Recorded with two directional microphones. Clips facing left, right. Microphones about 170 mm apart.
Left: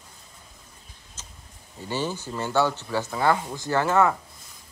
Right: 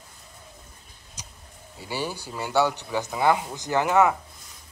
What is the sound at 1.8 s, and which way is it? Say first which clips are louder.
Speech: left 2 dB; 10° right (ahead or behind).